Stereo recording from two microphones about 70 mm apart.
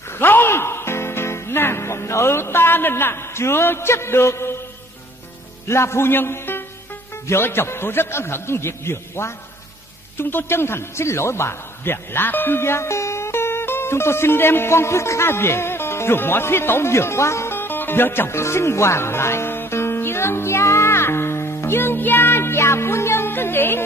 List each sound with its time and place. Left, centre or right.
0.2 s music: left
5.7 s a man's voice: left